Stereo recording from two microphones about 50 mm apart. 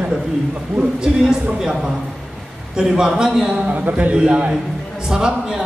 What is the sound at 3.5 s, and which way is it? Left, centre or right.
Speech, right.